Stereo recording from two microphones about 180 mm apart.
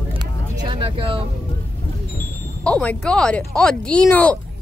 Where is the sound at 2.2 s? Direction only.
5° left (ahead or behind).